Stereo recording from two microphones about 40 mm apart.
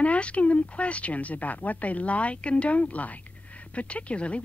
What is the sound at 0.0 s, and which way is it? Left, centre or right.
A woman's voice, left.